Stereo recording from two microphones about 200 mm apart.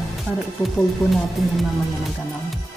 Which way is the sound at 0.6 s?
15° left (ahead or behind).